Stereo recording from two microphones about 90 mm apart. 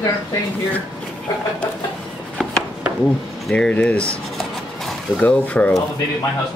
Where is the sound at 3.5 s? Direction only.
10° left (ahead or behind).